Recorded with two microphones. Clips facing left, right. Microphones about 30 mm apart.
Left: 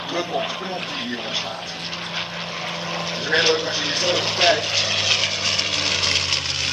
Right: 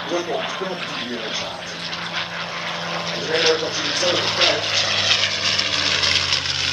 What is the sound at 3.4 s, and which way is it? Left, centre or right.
Vehicle, centre.